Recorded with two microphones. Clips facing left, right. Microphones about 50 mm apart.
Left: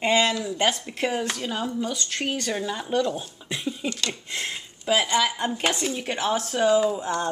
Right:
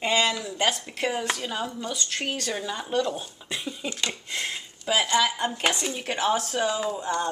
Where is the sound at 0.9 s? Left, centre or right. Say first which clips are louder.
Left 1 dB; centre.